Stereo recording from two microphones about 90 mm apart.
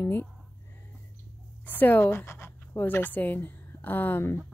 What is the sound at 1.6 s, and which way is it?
Speech, 20° left (ahead or behind).